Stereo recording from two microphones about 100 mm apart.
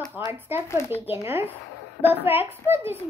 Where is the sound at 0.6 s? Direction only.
25° left (ahead or behind).